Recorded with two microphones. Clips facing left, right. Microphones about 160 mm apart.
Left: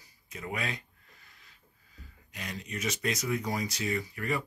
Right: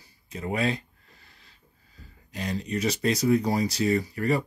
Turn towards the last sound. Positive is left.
turn(degrees=-35)  # may be behind; listen again after turning